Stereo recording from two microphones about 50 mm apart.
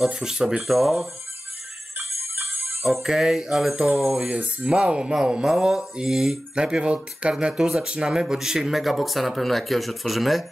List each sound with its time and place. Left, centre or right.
0.0 s speech: centre
2.0 s music: right
2.8 s speech: centre
4.6 s speech: centre
6.5 s speech: centre